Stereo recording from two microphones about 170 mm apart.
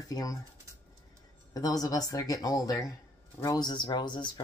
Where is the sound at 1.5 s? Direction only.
20° left (ahead or behind).